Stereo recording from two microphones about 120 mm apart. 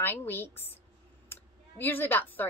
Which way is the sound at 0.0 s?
15° left (ahead or behind).